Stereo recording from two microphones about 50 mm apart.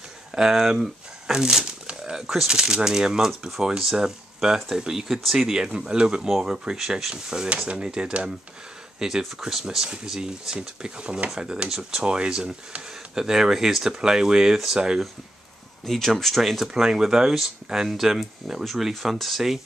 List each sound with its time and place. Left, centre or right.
0.3 s speech: centre
9.0 s speech: centre
15.8 s speech: centre